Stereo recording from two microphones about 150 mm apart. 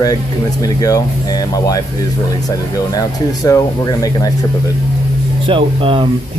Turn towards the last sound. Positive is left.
turn(degrees=-35)  # may be behind; listen again after turning